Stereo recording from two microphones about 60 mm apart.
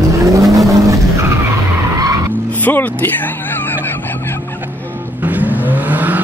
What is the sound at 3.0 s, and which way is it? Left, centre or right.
Vehicle, left.